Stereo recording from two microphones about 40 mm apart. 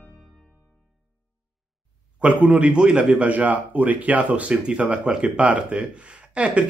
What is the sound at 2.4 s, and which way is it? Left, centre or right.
Speech, right.